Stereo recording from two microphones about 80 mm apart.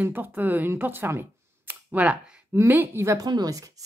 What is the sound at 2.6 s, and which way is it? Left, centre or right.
Speech, right.